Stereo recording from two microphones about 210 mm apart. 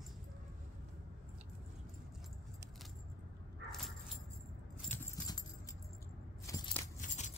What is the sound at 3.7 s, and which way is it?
Dog, centre (ahead or behind).